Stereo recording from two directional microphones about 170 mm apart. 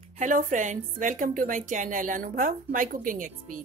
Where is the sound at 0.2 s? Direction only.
50° right (ahead or behind).